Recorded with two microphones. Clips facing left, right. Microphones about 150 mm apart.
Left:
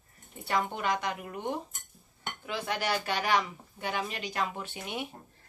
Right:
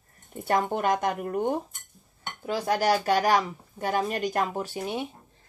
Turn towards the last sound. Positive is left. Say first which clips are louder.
# right 7 dB
turn(degrees=-35)  # may be behind; listen again after turning